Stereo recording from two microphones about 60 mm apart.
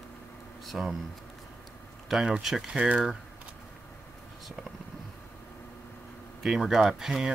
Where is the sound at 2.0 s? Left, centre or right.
Centre.